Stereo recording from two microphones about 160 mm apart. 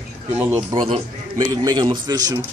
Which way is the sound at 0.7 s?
30° right (ahead or behind).